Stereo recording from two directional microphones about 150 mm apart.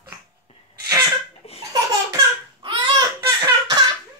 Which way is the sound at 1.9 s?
25° right (ahead or behind).